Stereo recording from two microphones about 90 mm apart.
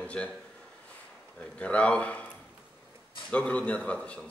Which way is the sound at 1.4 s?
15° left (ahead or behind).